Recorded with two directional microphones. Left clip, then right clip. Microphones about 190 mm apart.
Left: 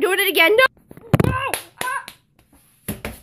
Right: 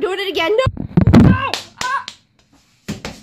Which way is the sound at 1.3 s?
5° right (ahead or behind).